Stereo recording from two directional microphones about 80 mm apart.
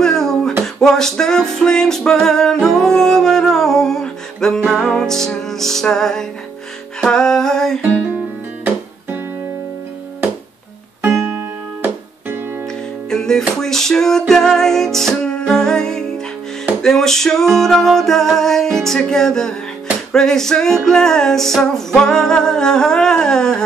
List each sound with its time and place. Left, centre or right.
0.0 s a sound: centre
0.7 s music: centre
11.2 s music: right
13.1 s music: centre